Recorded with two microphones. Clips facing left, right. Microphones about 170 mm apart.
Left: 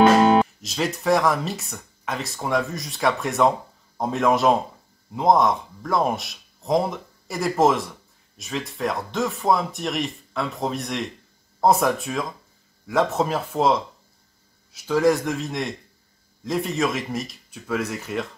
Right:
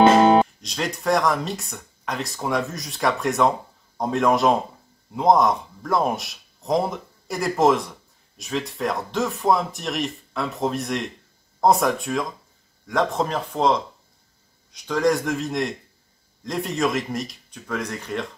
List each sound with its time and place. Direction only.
0.0 s music: 30° right (ahead or behind)
0.6 s speech: 5° left (ahead or behind)